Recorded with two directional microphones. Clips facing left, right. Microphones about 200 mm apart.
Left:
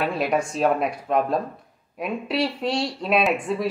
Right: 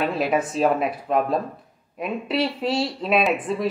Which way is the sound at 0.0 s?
Centre (ahead or behind).